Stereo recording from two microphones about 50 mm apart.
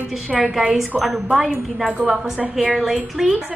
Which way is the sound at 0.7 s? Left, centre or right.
Centre.